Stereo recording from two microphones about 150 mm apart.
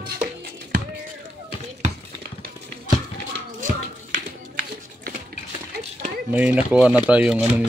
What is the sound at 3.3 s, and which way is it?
Music, 60° right (ahead or behind).